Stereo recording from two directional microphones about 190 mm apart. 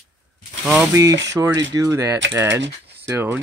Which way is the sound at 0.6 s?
10° right (ahead or behind).